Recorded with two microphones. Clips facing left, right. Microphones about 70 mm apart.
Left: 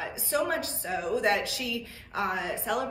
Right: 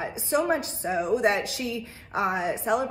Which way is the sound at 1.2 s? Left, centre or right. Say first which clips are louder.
Right 3 dB; right.